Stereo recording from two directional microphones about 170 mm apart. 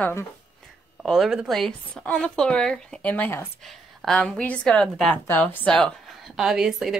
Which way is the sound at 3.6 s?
Centre (ahead or behind).